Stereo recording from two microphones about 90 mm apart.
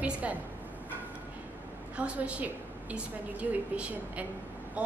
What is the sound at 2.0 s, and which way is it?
A woman's voice, 15° right (ahead or behind).